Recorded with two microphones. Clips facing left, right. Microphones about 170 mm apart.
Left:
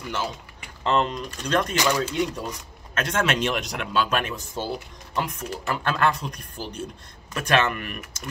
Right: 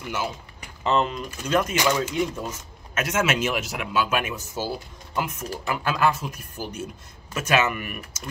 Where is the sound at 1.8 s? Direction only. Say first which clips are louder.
Even; 20° right (ahead or behind).